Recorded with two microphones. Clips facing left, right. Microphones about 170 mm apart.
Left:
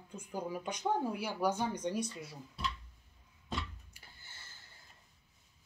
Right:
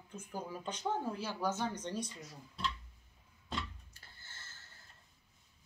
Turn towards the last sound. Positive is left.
turn(degrees=15)  # may be behind; listen again after turning